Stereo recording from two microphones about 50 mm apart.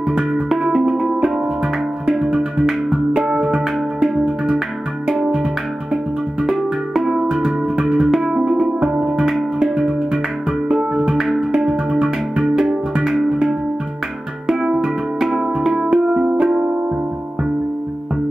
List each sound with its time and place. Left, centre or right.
0.1 s music: centre
2.1 s music: centre
5.2 s music: centre
11.5 s music: centre
11.9 s music: centre
14.5 s music: centre
15.9 s music: centre